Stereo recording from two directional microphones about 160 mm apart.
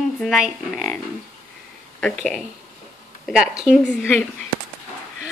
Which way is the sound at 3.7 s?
Centre (ahead or behind).